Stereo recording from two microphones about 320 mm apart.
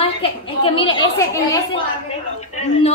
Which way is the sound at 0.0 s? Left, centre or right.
Centre.